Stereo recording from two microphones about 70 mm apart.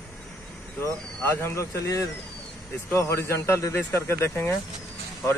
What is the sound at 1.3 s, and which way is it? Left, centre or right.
Speech, left.